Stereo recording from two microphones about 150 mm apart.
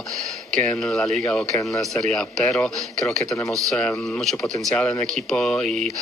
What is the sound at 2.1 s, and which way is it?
Speech, 5° left (ahead or behind).